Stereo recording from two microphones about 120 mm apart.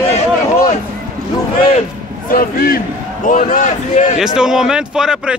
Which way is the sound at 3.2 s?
90° left.